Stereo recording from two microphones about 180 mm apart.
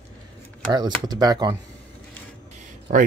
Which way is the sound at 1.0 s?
20° right (ahead or behind).